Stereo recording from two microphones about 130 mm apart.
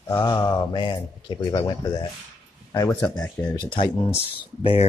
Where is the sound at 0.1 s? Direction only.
20° left (ahead or behind).